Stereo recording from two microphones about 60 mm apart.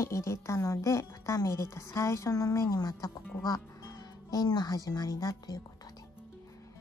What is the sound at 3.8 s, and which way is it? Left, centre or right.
Speech, left.